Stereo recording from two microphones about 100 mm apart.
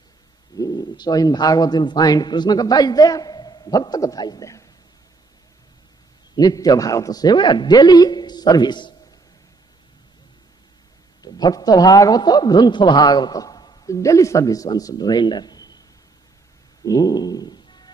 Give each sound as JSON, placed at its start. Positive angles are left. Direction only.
{"t": 0.6, "sound": "a man's voice", "side_deg": 40}
{"t": 6.3, "sound": "a man's voice", "side_deg": 40}
{"t": 11.2, "sound": "a man's voice", "side_deg": 45}
{"t": 13.8, "sound": "a man's voice", "side_deg": 30}
{"t": 16.8, "sound": "cat", "side_deg": 40}